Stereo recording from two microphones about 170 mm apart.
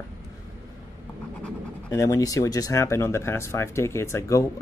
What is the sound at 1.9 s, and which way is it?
Speech, 20° left (ahead or behind).